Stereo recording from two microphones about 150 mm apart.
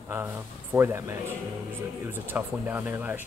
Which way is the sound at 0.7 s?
15° right (ahead or behind).